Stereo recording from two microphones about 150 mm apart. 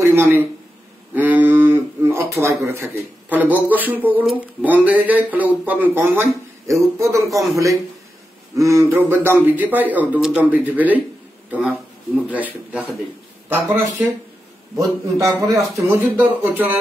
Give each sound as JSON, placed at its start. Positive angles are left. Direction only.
{"t": 0.0, "sound": "a sound", "side_deg": -15}
{"t": 2.4, "sound": "a man's voice", "side_deg": -20}
{"t": 12.2, "sound": "a man's voice", "side_deg": -10}
{"t": 14.8, "sound": "a man's voice", "side_deg": -25}